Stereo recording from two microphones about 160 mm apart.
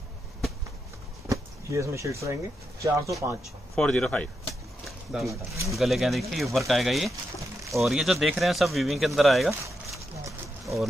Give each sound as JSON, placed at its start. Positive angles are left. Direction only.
{"t": 1.3, "sound": "speech", "side_deg": -20}
{"t": 3.7, "sound": "speech", "side_deg": 5}
{"t": 5.2, "sound": "speech", "side_deg": -20}
{"t": 5.7, "sound": "speech", "side_deg": 0}
{"t": 10.6, "sound": "a sound", "side_deg": 0}